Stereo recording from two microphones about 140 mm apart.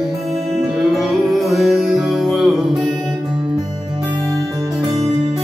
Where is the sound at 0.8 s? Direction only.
Centre (ahead or behind).